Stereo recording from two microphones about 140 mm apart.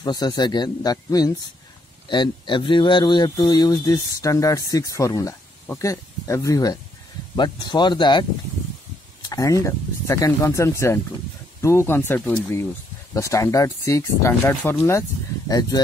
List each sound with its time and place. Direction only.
0.0 s speech: 30° left (ahead or behind)
9.3 s speech: 25° left (ahead or behind)
14.9 s speech: 25° left (ahead or behind)